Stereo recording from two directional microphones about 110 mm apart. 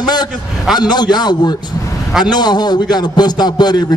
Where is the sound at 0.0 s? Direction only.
40° left (ahead or behind).